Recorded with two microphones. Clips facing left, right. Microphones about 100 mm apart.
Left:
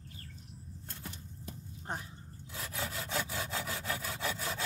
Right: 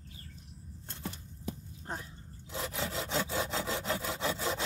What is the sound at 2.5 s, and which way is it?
Sawing, 25° right (ahead or behind).